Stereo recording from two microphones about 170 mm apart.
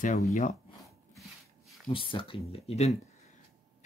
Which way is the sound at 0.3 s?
45° left (ahead or behind).